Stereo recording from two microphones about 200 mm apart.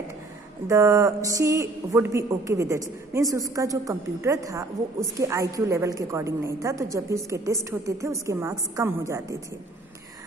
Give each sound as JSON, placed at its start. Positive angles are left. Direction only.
{"t": 0.7, "sound": "speech", "side_deg": -15}